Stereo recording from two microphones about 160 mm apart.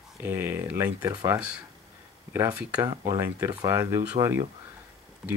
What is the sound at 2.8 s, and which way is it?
Speech, 25° right (ahead or behind).